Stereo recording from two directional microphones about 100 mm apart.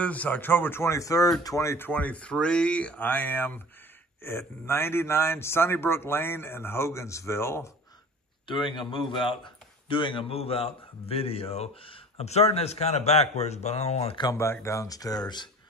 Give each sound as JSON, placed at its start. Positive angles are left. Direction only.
{"t": 0.0, "sound": "a man's voice", "side_deg": 15}
{"t": 1.9, "sound": "a man's voice", "side_deg": 15}
{"t": 8.5, "sound": "a man's voice", "side_deg": 55}
{"t": 10.3, "sound": "speech", "side_deg": 80}
{"t": 14.3, "sound": "speech", "side_deg": 25}